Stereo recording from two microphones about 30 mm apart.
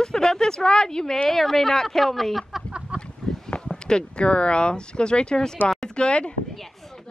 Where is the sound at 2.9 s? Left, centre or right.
Right.